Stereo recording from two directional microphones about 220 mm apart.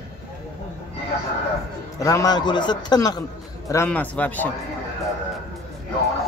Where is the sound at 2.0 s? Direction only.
15° left (ahead or behind).